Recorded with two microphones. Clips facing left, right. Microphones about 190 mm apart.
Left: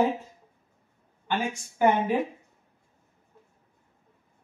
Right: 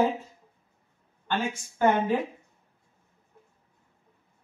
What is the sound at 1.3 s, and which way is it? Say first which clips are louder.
Speech: even; 10° left (ahead or behind).